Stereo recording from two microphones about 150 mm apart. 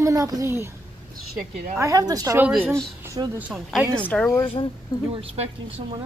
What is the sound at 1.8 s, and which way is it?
Speech, 20° right (ahead or behind).